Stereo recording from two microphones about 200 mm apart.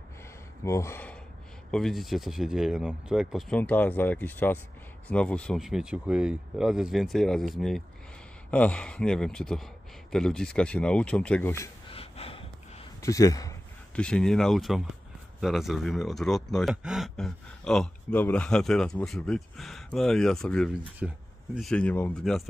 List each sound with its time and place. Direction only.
0.7 s speech: 15° left (ahead or behind)
1.7 s speech: centre (ahead or behind)
11.9 s gasp: 30° left (ahead or behind)
13.0 s speech: 15° left (ahead or behind)
13.9 s speech: 5° left (ahead or behind)